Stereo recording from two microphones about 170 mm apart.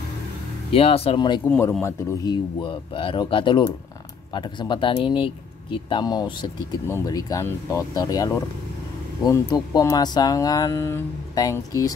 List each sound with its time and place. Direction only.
0.7 s speech: 35° left (ahead or behind)
1.4 s speech: 10° left (ahead or behind)